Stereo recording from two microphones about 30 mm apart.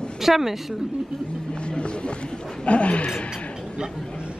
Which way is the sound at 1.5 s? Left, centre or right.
Left.